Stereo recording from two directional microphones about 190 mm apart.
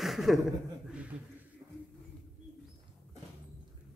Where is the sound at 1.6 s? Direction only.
15° right (ahead or behind).